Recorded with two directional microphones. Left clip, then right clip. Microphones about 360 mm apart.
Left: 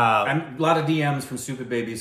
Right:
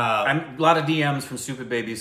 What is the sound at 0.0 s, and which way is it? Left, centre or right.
Speech, centre.